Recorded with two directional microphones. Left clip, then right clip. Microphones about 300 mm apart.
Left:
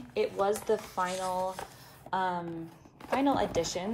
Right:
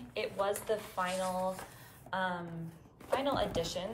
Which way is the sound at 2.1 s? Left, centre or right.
Centre.